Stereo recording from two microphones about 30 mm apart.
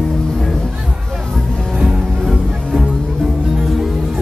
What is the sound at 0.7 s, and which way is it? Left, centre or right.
Music, centre.